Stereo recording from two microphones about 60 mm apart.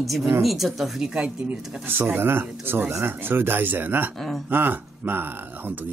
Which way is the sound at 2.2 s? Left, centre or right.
Right.